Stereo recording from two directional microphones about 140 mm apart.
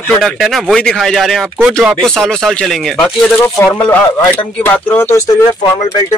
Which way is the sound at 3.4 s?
20° left (ahead or behind).